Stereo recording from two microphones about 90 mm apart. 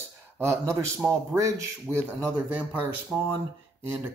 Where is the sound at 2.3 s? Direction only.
15° right (ahead or behind).